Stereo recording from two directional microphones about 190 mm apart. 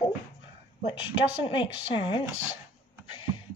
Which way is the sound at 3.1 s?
25° left (ahead or behind).